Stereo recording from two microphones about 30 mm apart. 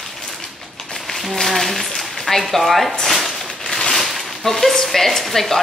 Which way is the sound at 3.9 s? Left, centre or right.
Centre.